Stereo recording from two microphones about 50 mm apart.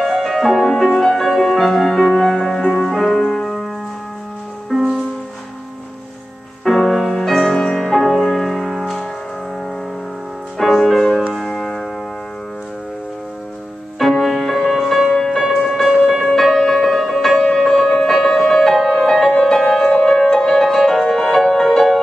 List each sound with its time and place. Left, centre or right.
0.0 s music: centre
4.7 s music: centre
6.6 s music: centre
10.6 s music: centre
14.2 s music: centre